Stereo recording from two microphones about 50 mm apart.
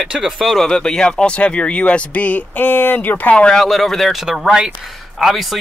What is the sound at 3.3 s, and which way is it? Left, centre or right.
Speech, left.